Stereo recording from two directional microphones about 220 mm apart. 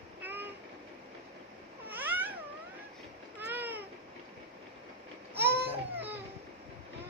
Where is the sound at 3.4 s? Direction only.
10° right (ahead or behind).